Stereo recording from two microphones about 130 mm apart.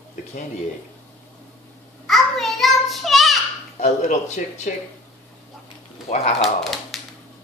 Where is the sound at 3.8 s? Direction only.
65° left (ahead or behind).